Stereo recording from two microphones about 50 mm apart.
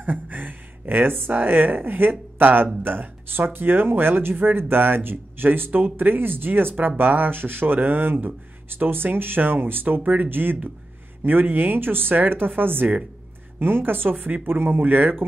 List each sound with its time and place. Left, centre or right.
0.0 s gasp: right
1.3 s speech: right
6.7 s speech: right
7.0 s speech: right
14.4 s speech: right